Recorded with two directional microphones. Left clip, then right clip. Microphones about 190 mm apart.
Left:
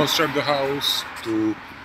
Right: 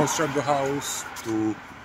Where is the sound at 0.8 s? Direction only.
50° right (ahead or behind).